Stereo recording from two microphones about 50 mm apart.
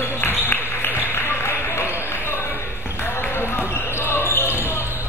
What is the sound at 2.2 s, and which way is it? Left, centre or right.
Basketball bounce, left.